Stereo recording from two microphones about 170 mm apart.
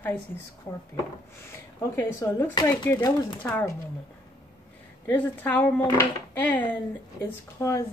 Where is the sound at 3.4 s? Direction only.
15° left (ahead or behind).